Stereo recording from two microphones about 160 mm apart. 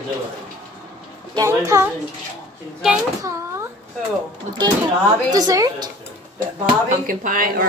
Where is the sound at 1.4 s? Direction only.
20° right (ahead or behind).